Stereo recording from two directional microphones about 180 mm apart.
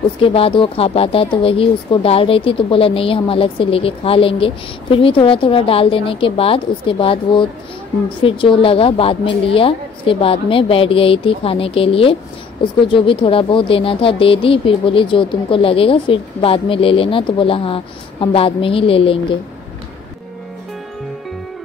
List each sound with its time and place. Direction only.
0.2 s speech: 30° left (ahead or behind)